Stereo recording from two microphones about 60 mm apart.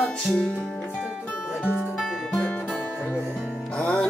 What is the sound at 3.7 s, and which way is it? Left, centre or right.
Music, centre.